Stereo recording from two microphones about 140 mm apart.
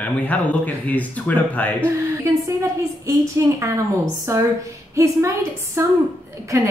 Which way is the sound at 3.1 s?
20° right (ahead or behind).